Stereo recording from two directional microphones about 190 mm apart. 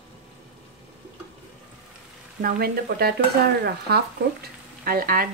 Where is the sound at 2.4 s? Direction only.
55° right (ahead or behind).